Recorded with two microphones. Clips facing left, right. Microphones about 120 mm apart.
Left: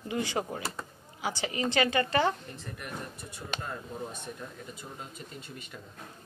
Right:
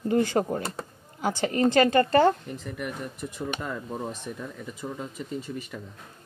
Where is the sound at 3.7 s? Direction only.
90° right.